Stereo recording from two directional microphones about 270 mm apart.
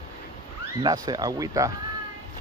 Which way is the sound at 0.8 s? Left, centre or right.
Centre.